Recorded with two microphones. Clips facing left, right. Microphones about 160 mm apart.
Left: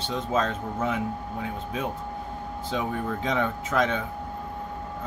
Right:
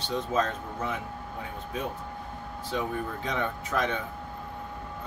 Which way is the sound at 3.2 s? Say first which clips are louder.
Left 5 dB; 90° left.